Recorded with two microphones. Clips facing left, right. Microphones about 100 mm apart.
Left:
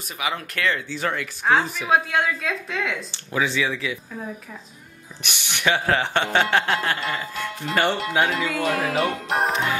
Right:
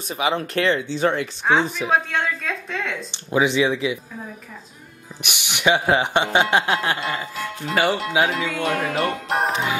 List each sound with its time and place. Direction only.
0.1 s speech: 30° right (ahead or behind)
1.9 s speech: 5° left (ahead or behind)
3.1 s speech: 20° right (ahead or behind)
5.2 s speech: 15° right (ahead or behind)